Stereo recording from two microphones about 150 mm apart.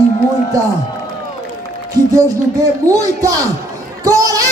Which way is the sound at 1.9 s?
25° right (ahead or behind).